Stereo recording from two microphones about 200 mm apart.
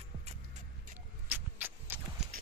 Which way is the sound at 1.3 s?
10° right (ahead or behind).